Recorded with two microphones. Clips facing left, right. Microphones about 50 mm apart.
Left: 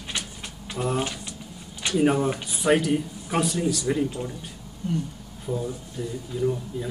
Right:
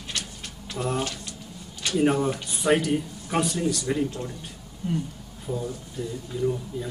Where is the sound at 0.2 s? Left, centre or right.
Centre.